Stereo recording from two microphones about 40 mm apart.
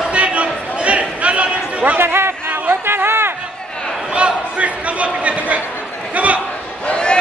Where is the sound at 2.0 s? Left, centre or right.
Right.